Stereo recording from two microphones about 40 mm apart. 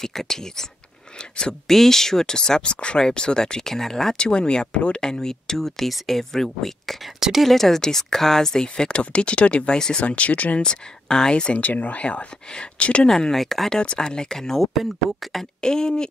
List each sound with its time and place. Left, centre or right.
0.0 s speech: centre
1.7 s speech: centre
4.2 s speech: left
5.0 s speech: centre
7.2 s speech: centre
7.4 s speech: centre; by 10.6 s left
10.6 s speech: centre
11.5 s speech: left
13.1 s speech: centre
13.7 s speech: centre
14.7 s speech: centre
15.6 s speech: centre